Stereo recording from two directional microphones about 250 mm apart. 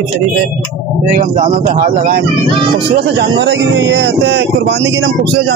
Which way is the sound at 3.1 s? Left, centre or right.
Right.